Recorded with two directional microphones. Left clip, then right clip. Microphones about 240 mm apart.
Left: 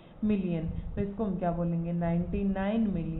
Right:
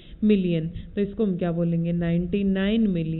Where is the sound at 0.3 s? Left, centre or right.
Right.